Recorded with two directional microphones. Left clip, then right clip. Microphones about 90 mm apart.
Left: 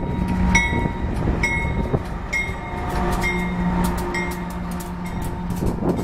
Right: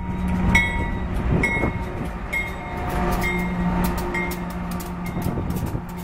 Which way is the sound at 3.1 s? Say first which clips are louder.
Left 2 dB; centre (ahead or behind).